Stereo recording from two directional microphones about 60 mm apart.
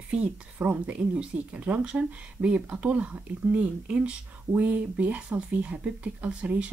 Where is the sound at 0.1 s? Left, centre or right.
Centre.